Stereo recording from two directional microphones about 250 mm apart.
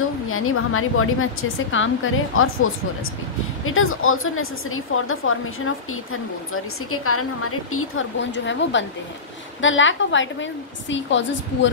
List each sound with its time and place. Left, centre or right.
0.3 s a woman's voice: left